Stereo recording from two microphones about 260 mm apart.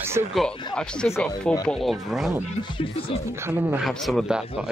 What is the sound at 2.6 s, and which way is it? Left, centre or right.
Speech, centre.